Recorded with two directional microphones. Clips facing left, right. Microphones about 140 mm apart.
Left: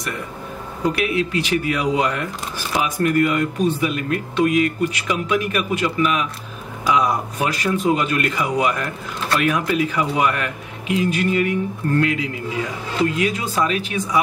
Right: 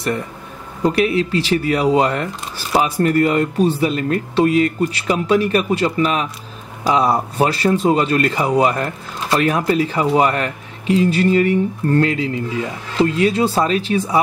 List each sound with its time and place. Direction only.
0.8 s speech: 35° right (ahead or behind)